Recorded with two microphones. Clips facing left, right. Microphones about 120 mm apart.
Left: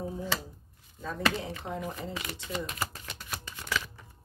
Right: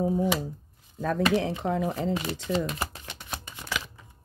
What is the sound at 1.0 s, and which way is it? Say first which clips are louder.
Speech: right 7 dB; 85° right.